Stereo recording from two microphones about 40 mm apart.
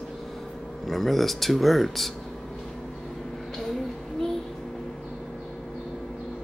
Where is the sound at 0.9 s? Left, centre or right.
Centre.